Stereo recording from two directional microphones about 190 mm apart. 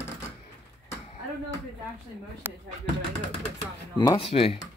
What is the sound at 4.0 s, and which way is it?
Speech, 25° left (ahead or behind).